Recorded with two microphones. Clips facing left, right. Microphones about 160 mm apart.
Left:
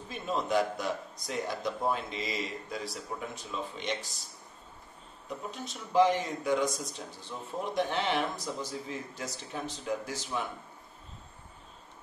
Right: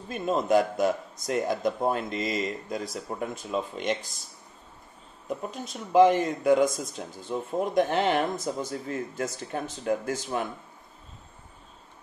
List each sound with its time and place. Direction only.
0.1 s speech: 50° right (ahead or behind)
5.5 s speech: 50° right (ahead or behind)